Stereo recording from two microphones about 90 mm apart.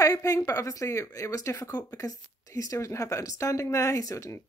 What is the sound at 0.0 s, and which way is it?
Speech, 40° left (ahead or behind).